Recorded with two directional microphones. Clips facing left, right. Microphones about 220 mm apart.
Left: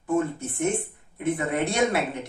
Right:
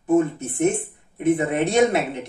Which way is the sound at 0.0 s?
20° right (ahead or behind).